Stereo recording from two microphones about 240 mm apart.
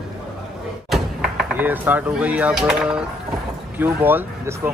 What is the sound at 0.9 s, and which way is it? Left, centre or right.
Speech, centre.